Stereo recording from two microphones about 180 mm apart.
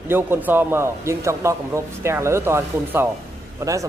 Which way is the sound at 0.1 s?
10° right (ahead or behind).